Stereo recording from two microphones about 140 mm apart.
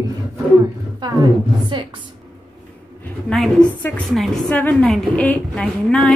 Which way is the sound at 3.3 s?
5° left (ahead or behind).